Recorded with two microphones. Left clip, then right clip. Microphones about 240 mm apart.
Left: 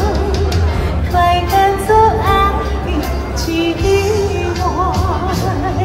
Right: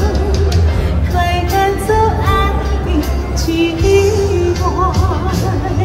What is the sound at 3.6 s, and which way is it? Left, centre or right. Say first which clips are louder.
Music: right 3 dB; left.